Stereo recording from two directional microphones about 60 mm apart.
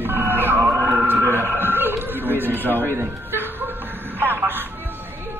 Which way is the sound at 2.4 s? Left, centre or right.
Left.